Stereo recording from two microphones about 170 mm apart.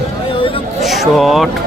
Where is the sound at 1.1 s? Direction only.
Centre (ahead or behind).